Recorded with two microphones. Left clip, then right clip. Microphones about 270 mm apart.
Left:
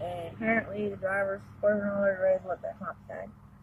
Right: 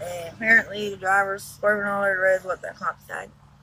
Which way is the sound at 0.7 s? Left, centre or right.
Centre.